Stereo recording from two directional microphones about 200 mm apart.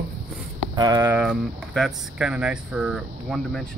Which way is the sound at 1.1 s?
5° right (ahead or behind).